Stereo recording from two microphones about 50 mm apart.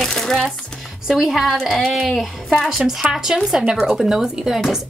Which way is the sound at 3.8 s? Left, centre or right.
Centre.